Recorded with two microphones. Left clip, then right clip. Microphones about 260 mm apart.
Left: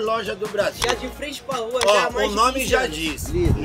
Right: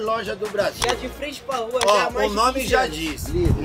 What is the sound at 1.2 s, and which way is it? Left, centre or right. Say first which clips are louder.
Speech: right 1 dB; centre.